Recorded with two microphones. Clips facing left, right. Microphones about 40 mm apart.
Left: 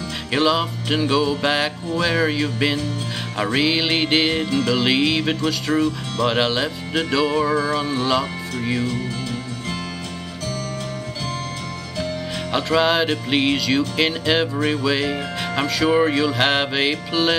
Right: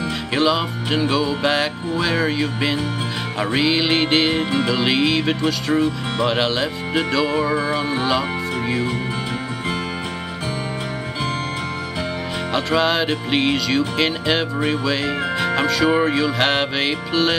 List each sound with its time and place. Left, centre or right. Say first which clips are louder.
0.3 s speech: left 1 dB; centre
4.4 s music: right 1 dB; centre
4.7 s speech: even; centre
5.8 s music: right 1 dB; centre
6.2 s speech: even; centre
7.5 s music: even; centre
12.5 s speech: left 1 dB; centre